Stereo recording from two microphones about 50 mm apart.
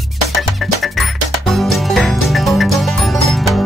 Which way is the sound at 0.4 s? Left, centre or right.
Centre.